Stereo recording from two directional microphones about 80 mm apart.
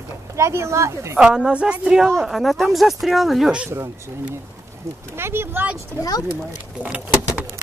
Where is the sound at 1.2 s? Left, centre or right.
Centre.